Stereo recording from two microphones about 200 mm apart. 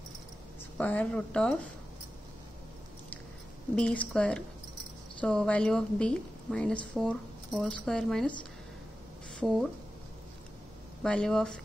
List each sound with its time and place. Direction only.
0.7 s a woman's voice: 5° left (ahead or behind)
3.7 s a woman's voice: 5° left (ahead or behind)
11.0 s a woman's voice: 5° left (ahead or behind)